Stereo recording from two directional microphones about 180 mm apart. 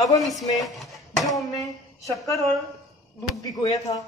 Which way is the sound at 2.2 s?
20° left (ahead or behind).